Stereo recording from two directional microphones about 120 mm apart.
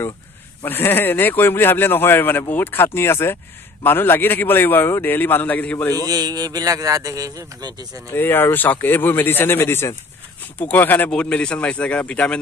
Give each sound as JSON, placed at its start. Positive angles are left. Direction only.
{"t": 0.7, "sound": "speech", "side_deg": 15}
{"t": 5.9, "sound": "a man's voice", "side_deg": -30}
{"t": 8.1, "sound": "speech", "side_deg": 15}